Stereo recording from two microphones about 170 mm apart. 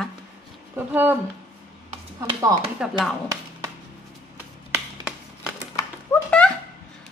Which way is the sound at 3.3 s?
20° right (ahead or behind).